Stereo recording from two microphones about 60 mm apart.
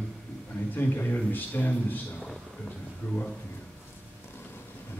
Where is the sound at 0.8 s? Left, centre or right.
Left.